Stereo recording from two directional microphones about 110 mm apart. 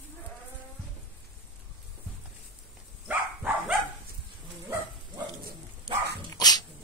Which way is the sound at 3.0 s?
5° right (ahead or behind).